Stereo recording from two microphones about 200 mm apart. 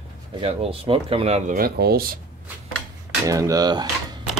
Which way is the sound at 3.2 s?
15° right (ahead or behind).